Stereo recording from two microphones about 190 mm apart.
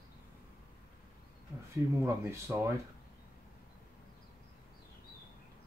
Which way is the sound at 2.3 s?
15° right (ahead or behind).